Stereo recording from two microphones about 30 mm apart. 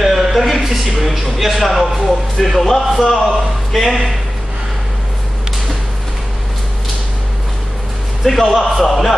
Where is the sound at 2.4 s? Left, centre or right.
Centre.